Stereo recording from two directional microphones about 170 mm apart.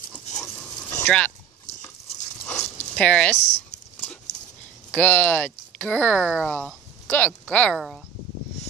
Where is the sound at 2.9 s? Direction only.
5° left (ahead or behind).